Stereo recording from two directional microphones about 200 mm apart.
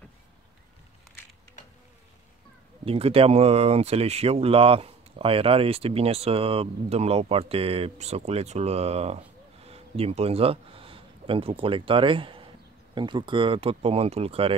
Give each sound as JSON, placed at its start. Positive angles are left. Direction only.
{"t": 2.8, "sound": "speech", "side_deg": -30}